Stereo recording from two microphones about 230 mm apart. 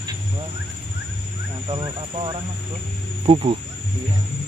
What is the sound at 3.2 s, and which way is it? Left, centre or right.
Speech, right.